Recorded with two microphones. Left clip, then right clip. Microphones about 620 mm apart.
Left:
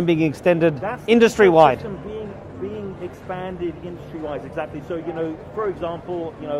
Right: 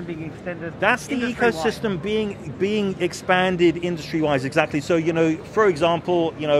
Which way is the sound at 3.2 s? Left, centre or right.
Right.